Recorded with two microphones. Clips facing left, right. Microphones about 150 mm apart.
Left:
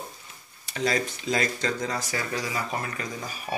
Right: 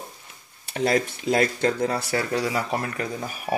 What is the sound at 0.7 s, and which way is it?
Speech, 55° right (ahead or behind).